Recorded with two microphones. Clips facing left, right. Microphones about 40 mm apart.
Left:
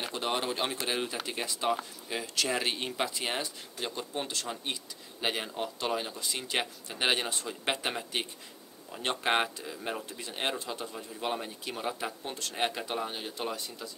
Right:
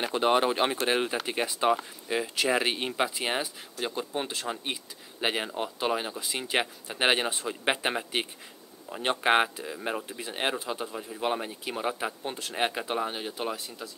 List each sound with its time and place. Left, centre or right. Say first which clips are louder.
0.0 s speech: right 8 dB; right